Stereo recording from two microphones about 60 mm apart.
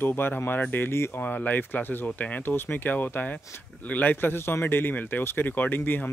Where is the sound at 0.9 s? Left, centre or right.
Left.